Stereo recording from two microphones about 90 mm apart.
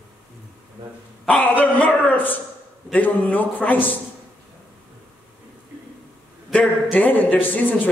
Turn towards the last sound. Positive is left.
turn(degrees=20)  # may be behind; listen again after turning